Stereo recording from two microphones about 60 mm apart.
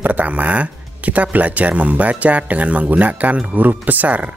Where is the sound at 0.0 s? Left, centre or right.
Right.